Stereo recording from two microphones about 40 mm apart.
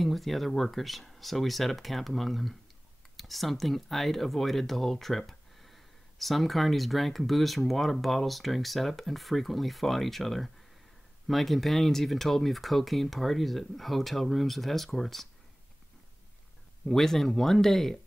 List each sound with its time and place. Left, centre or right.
0.0 s speech: centre
16.8 s speech: centre